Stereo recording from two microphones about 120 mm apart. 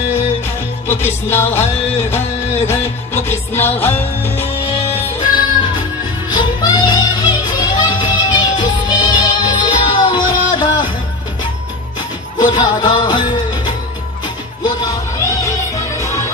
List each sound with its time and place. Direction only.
0.8 s music: 20° left (ahead or behind)
5.3 s music: 40° left (ahead or behind)
12.4 s music: 35° left (ahead or behind)
15.1 s music: 25° left (ahead or behind)